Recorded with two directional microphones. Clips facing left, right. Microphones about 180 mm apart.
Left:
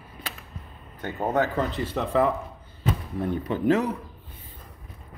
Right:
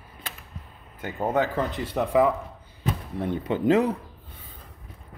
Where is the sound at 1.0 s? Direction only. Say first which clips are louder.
Even; 10° right (ahead or behind).